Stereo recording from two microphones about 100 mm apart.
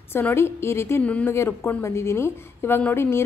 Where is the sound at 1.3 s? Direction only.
25° left (ahead or behind).